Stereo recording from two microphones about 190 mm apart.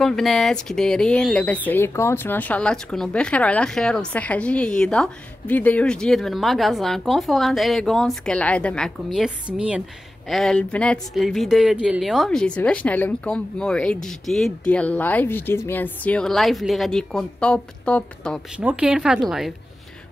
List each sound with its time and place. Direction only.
0.0 s speech: centre (ahead or behind)
18.6 s speech: 5° right (ahead or behind)